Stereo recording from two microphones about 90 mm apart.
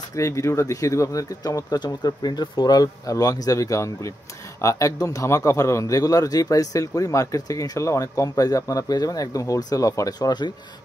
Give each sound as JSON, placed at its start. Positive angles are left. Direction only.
{"t": 0.1, "sound": "a man's voice", "side_deg": 35}